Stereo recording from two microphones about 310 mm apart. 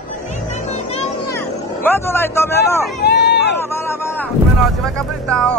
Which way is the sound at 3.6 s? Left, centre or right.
Centre.